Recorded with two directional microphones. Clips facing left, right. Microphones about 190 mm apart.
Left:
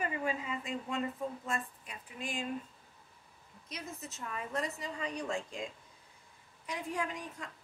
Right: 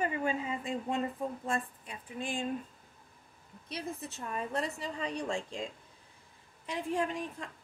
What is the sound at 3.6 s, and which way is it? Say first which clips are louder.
A woman's voice: right 5 dB; 30° right (ahead or behind).